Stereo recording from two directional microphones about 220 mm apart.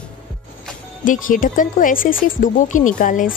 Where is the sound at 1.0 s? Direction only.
35° left (ahead or behind).